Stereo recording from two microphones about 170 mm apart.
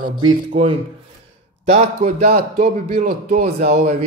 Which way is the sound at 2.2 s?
60° right (ahead or behind).